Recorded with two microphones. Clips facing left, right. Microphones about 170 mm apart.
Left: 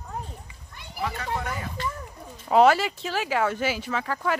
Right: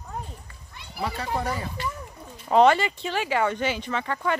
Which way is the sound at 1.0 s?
35° right (ahead or behind).